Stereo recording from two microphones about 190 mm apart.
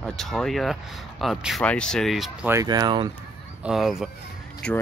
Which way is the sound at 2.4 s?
15° right (ahead or behind).